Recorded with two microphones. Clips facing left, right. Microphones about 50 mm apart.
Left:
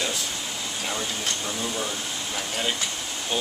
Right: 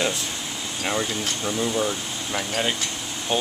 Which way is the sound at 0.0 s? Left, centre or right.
Right.